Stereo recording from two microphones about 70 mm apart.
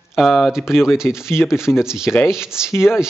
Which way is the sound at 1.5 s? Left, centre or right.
Centre.